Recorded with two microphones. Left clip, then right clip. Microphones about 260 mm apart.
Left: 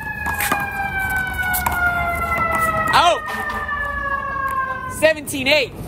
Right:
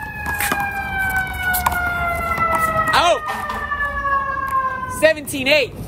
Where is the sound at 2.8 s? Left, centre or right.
Centre.